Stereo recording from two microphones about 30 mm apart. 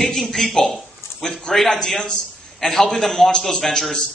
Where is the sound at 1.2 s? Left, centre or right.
Left.